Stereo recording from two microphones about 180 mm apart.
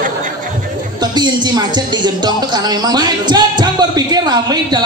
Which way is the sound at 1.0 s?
25° right (ahead or behind).